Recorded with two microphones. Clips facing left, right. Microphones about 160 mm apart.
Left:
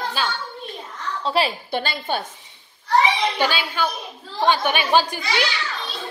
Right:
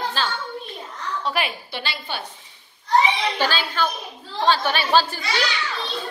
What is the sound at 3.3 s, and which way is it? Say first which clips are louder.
Speech: left 1 dB; 15° left (ahead or behind).